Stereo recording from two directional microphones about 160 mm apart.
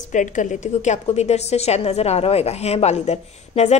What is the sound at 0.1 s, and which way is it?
A woman's voice, 50° left (ahead or behind).